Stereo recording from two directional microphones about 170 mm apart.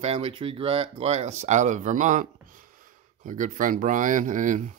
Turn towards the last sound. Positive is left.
turn(degrees=-45)  # may be behind; listen again after turning